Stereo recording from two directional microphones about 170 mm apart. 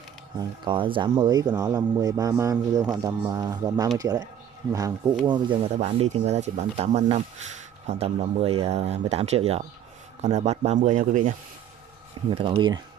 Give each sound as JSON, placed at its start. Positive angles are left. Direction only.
{"t": 0.4, "sound": "a man's voice", "side_deg": -30}
{"t": 12.4, "sound": "a man's voice", "side_deg": -30}